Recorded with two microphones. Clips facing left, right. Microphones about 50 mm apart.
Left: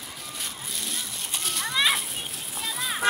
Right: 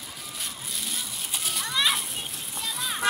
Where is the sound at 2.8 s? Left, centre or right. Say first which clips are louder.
Left 2 dB; centre.